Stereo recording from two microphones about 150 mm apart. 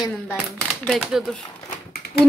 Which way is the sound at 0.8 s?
Centre (ahead or behind).